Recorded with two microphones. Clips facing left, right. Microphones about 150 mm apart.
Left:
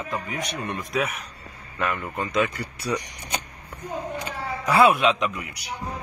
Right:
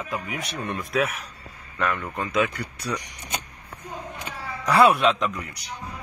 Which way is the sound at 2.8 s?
10° left (ahead or behind).